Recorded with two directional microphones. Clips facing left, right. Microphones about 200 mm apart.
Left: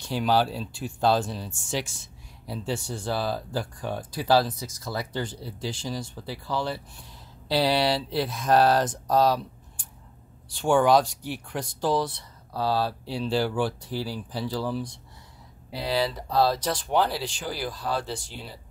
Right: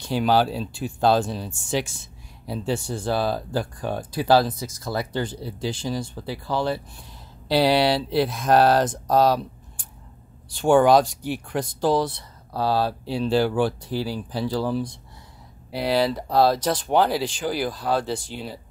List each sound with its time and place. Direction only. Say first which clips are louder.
0.2 s speech: right 3 dB; 55° right (ahead or behind); by 9.0 s 85° right
9.1 s speech: right 3 dB; 65° right (ahead or behind)
10.6 s speech: right 4 dB; 55° right (ahead or behind)
17.1 s speech: right 7 dB; 90° right
17.5 s speech: right 7 dB; 55° right (ahead or behind)